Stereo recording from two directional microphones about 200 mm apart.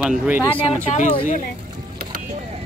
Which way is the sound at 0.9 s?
40° left (ahead or behind).